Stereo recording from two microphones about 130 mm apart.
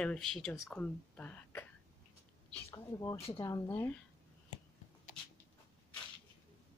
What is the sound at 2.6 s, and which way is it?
Speech, 25° left (ahead or behind).